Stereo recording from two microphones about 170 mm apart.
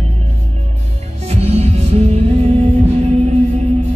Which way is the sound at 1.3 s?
40° right (ahead or behind).